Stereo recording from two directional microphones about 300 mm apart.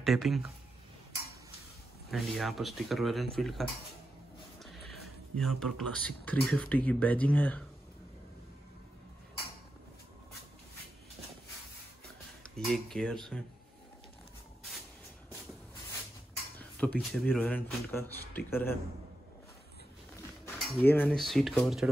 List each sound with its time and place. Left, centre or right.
0.0 s speech: centre
2.0 s speech: centre
5.6 s speech: centre
12.5 s speech: centre
16.5 s speech: centre
20.4 s speech: centre